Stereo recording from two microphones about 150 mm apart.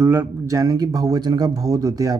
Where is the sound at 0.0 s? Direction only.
15° right (ahead or behind).